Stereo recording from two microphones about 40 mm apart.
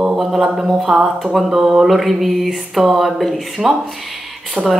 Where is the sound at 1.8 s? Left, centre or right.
Centre.